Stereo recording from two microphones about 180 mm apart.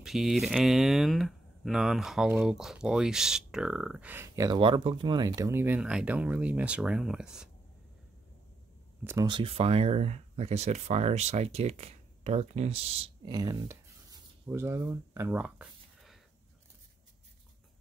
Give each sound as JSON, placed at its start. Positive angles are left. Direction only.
{"t": 0.0, "sound": "speech", "side_deg": 0}
{"t": 9.0, "sound": "speech", "side_deg": -15}
{"t": 9.3, "sound": "speech", "side_deg": -30}